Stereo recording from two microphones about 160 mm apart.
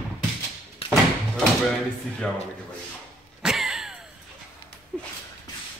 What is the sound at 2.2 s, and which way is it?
Speech, 5° left (ahead or behind).